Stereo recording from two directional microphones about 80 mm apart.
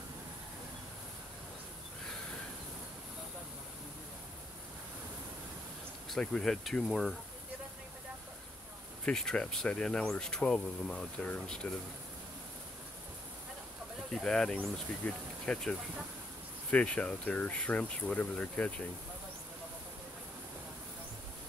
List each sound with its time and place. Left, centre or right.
6.0 s speech: centre
9.0 s speech: centre
14.1 s speech: centre
16.7 s speech: centre